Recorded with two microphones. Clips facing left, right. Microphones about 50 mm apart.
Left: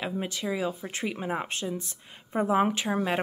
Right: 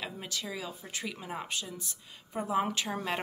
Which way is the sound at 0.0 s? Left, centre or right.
Left.